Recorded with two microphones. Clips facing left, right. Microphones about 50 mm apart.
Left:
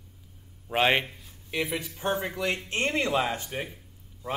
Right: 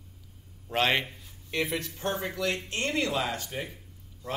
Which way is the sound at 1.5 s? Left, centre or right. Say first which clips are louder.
Even; centre.